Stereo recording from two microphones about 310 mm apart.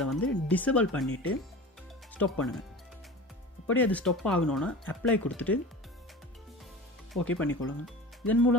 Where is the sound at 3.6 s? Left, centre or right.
Centre.